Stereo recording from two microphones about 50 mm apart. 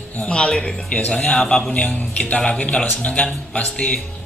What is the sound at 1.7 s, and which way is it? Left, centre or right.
A man's voice, left.